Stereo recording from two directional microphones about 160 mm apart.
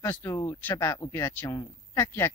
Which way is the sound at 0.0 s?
15° left (ahead or behind).